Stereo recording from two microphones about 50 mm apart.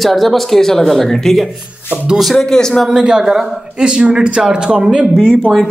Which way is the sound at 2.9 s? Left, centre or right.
Centre.